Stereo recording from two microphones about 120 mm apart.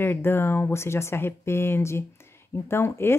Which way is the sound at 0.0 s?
20° left (ahead or behind).